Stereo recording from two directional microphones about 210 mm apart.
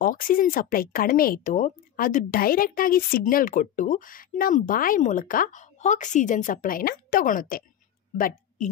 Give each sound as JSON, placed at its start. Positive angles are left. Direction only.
{"t": 0.0, "sound": "speech", "side_deg": 40}